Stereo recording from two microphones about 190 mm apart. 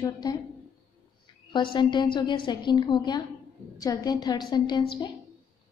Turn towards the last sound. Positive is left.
turn(degrees=20)  # may be behind; listen again after turning